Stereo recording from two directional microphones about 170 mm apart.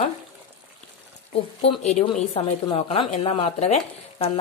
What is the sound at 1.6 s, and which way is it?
Speech, 35° left (ahead or behind).